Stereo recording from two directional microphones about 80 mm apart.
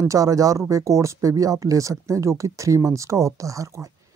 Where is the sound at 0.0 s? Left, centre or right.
Right.